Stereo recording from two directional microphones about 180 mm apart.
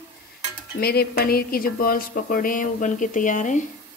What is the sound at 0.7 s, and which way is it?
Speech, 60° left (ahead or behind).